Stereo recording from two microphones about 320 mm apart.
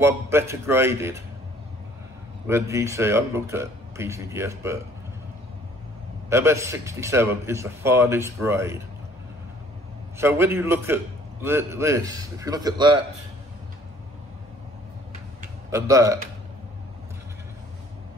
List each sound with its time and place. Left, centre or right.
0.0 s speech: centre
2.4 s speech: centre
6.3 s speech: centre
10.1 s speech: centre
15.7 s speech: centre